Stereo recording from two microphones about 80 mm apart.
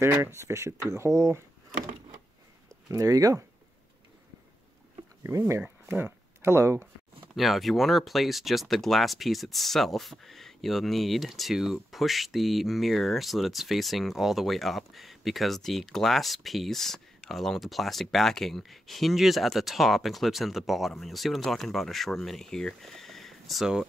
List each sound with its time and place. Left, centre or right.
0.1 s speech: right
2.9 s speech: right
5.9 s a sound: right
7.3 s speech: centre